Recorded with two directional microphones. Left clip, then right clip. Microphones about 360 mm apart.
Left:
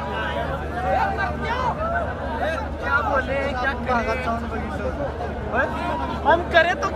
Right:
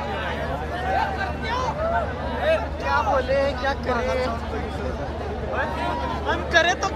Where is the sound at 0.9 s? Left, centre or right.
Left.